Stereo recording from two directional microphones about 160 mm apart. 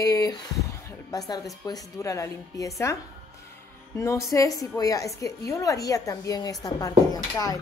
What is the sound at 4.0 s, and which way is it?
A woman's voice, 20° left (ahead or behind).